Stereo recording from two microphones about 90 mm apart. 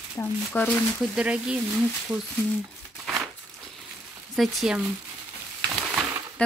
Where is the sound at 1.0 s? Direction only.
10° right (ahead or behind).